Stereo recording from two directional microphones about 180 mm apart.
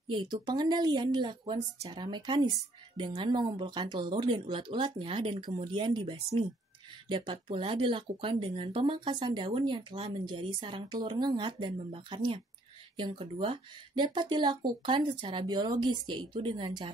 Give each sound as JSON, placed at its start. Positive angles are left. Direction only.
{"t": 0.1, "sound": "speech", "side_deg": -25}